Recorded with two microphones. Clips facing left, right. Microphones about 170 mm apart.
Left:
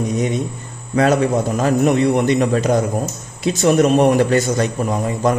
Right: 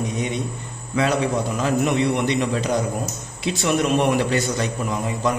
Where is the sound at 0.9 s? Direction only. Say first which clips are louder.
Left 6 dB; 45° left (ahead or behind).